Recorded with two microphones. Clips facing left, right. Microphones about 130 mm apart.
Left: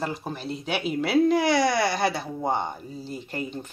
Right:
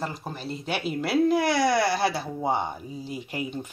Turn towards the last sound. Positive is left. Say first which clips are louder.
# even
turn(degrees=-10)  # may be behind; listen again after turning